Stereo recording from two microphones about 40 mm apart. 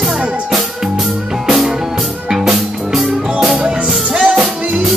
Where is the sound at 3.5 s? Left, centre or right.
Right.